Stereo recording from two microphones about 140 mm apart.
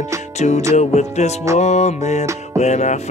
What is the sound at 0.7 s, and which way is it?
Music, 55° left (ahead or behind).